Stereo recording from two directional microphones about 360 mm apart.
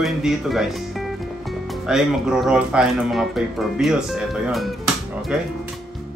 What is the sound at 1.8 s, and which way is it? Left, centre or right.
Speech, centre.